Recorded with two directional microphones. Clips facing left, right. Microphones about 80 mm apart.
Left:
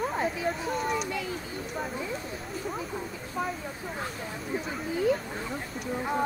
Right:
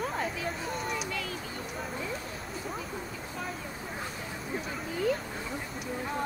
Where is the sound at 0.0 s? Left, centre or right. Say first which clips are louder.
Left 4 dB; centre.